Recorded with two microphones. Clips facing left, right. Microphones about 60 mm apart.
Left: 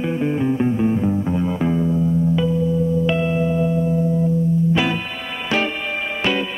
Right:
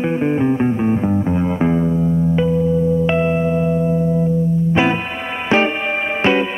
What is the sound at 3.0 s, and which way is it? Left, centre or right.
Music, right.